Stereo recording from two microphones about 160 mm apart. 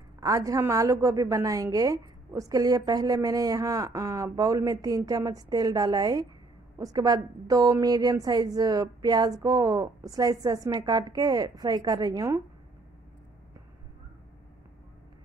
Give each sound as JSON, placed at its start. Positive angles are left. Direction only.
{"t": 0.2, "sound": "a woman's voice", "side_deg": -20}